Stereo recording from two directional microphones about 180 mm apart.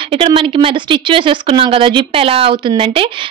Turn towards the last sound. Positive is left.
turn(degrees=-30)  # may be behind; listen again after turning